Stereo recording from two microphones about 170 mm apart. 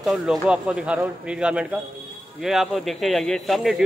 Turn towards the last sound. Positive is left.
turn(degrees=0)  # may be behind; listen again after turning